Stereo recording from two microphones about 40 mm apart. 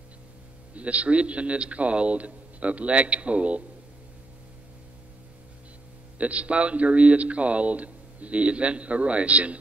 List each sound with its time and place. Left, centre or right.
0.7 s speech: right
6.1 s speech: right